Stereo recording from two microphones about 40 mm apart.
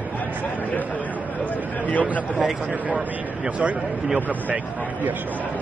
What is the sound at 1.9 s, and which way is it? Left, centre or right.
Speech, left.